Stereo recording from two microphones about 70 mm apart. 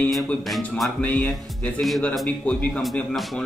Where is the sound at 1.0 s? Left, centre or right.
Centre.